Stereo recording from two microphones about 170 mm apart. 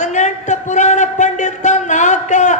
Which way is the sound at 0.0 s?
45° left (ahead or behind).